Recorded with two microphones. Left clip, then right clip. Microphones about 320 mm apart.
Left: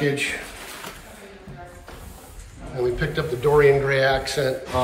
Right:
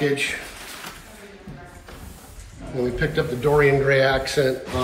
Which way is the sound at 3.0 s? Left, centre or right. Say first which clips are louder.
Right 1 dB; centre.